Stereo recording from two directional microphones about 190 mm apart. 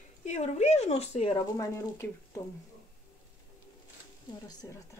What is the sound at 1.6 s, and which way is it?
Speech, 15° left (ahead or behind).